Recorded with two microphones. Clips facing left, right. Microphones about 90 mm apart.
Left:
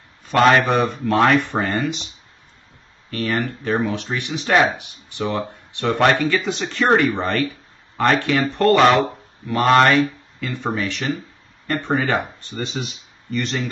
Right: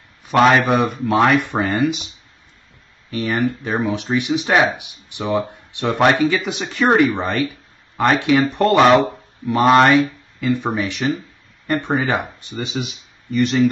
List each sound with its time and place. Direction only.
0.2 s speech: 10° right (ahead or behind)
3.1 s speech: 15° right (ahead or behind)
12.5 s speech: centre (ahead or behind)